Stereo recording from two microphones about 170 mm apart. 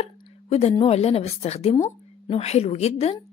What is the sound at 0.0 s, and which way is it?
A woman's voice, 35° left (ahead or behind).